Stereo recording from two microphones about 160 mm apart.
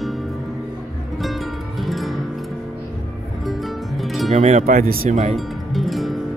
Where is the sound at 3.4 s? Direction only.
Centre (ahead or behind).